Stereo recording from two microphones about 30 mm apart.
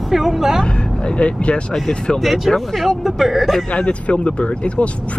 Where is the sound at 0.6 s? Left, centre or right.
Left.